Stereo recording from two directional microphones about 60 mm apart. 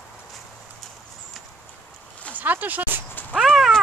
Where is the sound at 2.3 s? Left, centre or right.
Right.